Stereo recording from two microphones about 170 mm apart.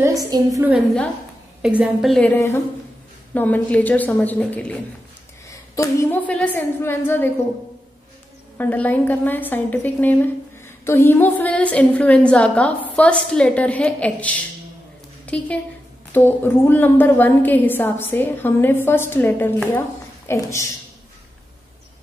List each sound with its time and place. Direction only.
0.0 s a woman's voice: 20° right (ahead or behind)
0.7 s a woman's voice: 5° left (ahead or behind)
1.6 s a woman's voice: 5° right (ahead or behind)
5.5 s a woman's voice: 20° left (ahead or behind)
8.5 s a woman's voice: 10° left (ahead or behind)